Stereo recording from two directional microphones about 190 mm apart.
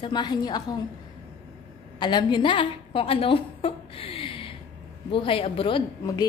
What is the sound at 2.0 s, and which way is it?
A woman's voice, 25° left (ahead or behind).